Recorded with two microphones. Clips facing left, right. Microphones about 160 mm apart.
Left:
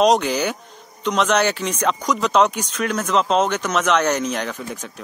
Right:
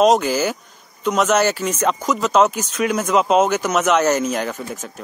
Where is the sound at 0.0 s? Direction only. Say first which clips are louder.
Right 2 dB; centre (ahead or behind).